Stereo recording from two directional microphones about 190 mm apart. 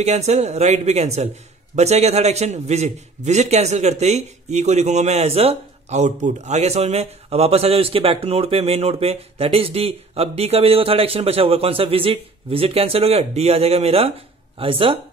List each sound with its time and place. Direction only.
0.0 s a man's voice: 35° right (ahead or behind)